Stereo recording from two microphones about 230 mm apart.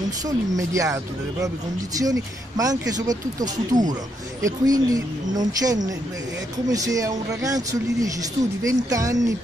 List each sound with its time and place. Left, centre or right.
0.6 s speech: centre
2.0 s speech: centre